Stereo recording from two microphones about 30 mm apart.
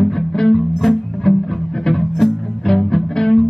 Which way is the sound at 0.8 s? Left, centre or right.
Centre.